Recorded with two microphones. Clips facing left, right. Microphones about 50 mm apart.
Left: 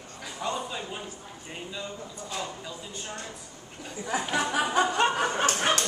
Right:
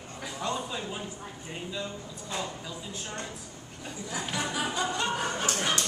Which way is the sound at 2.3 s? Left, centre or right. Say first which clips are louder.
Right 1 dB; centre.